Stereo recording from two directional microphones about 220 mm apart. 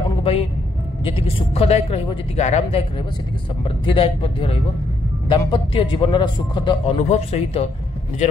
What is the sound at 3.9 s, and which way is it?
Speech, 25° left (ahead or behind).